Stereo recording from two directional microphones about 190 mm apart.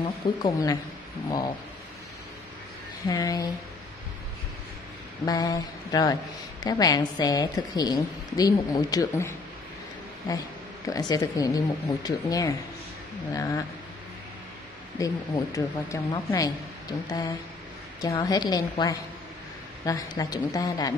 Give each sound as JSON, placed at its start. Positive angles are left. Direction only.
{"t": 0.0, "sound": "a woman's voice", "side_deg": 20}
{"t": 3.1, "sound": "a woman's voice", "side_deg": 20}
{"t": 5.2, "sound": "a woman's voice", "side_deg": 20}
{"t": 10.9, "sound": "a woman's voice", "side_deg": 20}
{"t": 15.0, "sound": "a woman's voice", "side_deg": 15}
{"t": 18.0, "sound": "a woman's voice", "side_deg": 20}